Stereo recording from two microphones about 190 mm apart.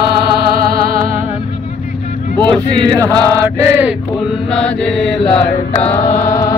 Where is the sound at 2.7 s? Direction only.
25° right (ahead or behind).